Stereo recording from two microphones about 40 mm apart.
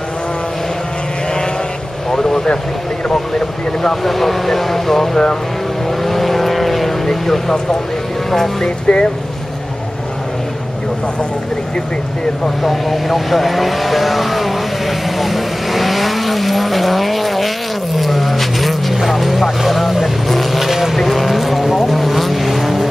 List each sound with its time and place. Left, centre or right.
2.0 s speech: centre
6.0 s vehicle: centre
8.3 s speech: centre
8.6 s speech: left
12.6 s speech: centre
17.9 s vehicle: centre